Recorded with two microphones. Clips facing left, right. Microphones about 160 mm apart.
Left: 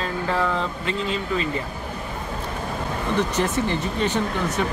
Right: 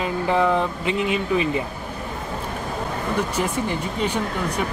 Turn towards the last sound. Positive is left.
turn(degrees=-10)  # may be behind; listen again after turning